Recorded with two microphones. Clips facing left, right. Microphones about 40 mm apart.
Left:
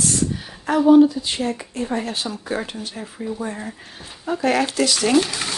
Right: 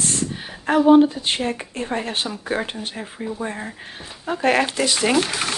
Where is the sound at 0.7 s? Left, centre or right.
Right.